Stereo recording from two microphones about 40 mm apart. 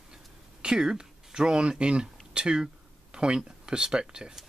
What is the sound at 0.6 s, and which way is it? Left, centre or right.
Speech, centre.